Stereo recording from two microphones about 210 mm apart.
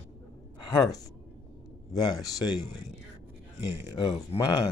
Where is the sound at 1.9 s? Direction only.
20° left (ahead or behind).